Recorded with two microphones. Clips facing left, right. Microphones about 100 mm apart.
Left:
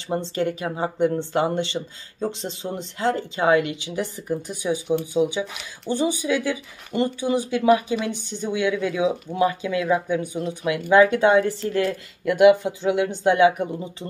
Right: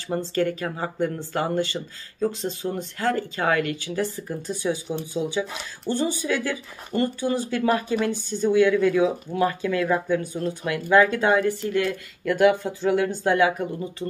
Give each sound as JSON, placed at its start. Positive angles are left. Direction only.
{"t": 0.1, "sound": "speech", "side_deg": 20}